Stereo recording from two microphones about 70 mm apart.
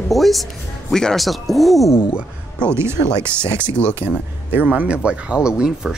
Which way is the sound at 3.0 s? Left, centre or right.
Left.